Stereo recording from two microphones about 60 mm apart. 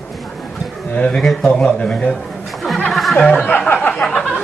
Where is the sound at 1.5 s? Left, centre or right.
Centre.